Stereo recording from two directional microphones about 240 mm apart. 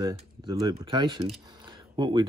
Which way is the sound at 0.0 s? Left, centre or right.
Centre.